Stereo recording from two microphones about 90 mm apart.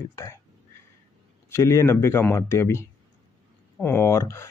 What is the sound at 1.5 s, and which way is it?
Speech, 30° left (ahead or behind).